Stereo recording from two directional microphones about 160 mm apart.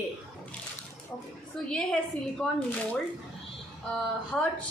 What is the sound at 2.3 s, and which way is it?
Speech, 5° left (ahead or behind).